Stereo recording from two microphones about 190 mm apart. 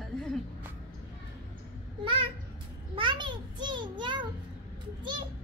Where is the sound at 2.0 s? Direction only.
30° right (ahead or behind).